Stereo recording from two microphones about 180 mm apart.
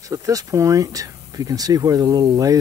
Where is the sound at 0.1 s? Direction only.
20° right (ahead or behind).